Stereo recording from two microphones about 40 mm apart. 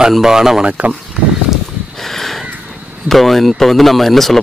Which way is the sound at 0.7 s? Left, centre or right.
Right.